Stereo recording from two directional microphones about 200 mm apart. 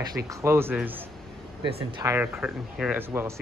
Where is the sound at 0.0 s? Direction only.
15° right (ahead or behind).